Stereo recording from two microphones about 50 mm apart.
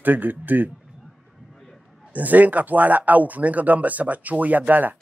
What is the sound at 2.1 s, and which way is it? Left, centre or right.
Speech, right.